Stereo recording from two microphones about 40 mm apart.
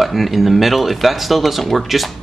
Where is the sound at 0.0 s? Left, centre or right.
Centre.